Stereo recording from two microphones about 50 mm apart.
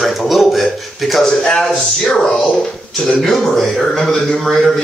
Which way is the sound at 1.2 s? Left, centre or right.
Centre.